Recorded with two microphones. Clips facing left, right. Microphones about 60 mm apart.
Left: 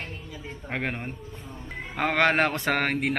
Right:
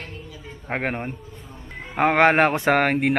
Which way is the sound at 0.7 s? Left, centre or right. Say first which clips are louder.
Right 5 dB; right.